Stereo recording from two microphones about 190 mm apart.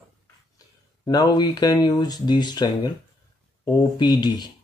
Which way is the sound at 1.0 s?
20° left (ahead or behind).